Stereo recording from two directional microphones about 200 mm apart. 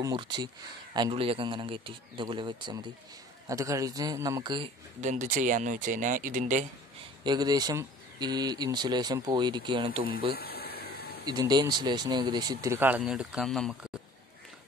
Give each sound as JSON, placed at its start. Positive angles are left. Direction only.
{"t": 0.0, "sound": "a man's voice", "side_deg": -20}
{"t": 5.0, "sound": "speech", "side_deg": -40}
{"t": 7.2, "sound": "speech", "side_deg": -20}
{"t": 10.3, "sound": "a sound", "side_deg": 50}
{"t": 11.2, "sound": "speech", "side_deg": -20}